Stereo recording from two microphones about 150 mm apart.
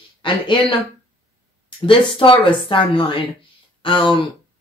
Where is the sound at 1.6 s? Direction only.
35° left (ahead or behind).